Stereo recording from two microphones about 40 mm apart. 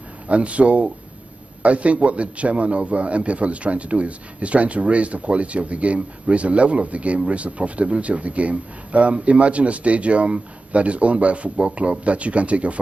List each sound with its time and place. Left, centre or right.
0.3 s a man's voice: right